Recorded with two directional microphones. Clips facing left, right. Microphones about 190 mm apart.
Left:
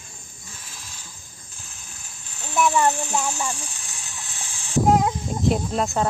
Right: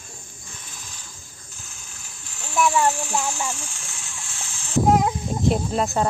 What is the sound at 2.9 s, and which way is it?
Speech, 20° left (ahead or behind).